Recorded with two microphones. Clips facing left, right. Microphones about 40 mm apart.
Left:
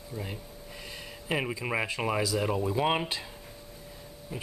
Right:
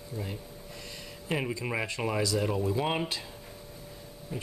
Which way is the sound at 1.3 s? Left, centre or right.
Centre.